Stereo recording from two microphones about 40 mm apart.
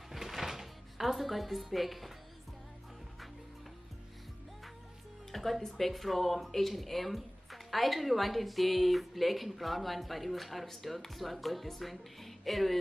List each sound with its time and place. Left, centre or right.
0.1 s music: centre
5.3 s speech: centre